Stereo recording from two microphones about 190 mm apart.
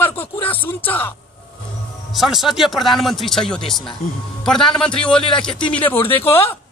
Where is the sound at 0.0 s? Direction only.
10° left (ahead or behind).